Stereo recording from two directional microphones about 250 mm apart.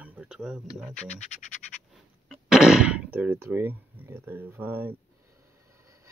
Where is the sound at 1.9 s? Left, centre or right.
Centre.